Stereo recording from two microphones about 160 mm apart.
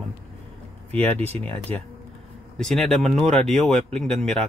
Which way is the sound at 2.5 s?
5° left (ahead or behind).